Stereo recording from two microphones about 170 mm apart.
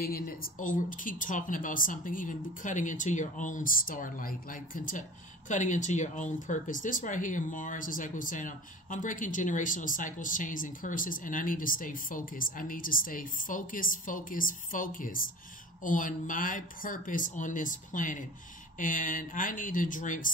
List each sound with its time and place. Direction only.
0.0 s speech: 60° left (ahead or behind)